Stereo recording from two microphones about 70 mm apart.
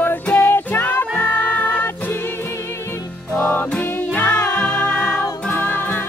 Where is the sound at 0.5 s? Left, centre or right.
Left.